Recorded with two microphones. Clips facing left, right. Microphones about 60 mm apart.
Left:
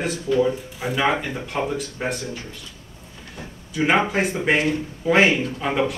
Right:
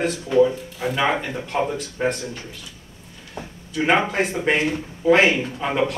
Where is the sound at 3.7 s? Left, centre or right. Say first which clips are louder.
Even; centre.